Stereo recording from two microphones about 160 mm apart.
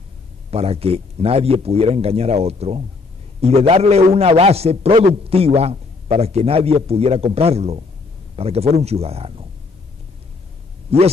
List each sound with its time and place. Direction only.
0.5 s a man's voice: 40° right (ahead or behind)